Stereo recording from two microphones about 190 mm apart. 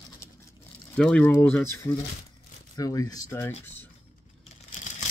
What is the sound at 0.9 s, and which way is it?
Speech, 5° left (ahead or behind).